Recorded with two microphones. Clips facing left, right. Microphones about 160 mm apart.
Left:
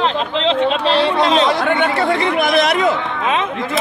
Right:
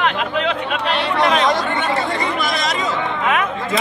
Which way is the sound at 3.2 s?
25° left (ahead or behind).